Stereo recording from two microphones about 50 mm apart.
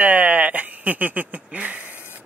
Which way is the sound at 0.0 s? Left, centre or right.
Right.